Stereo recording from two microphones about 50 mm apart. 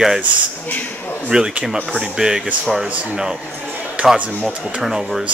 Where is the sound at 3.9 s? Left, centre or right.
Right.